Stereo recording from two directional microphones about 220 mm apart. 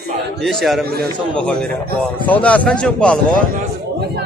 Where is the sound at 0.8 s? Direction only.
45° right (ahead or behind).